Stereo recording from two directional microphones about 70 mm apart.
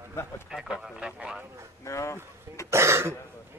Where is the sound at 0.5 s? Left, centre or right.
Centre.